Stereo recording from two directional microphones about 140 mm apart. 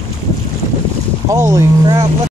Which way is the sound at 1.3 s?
20° right (ahead or behind).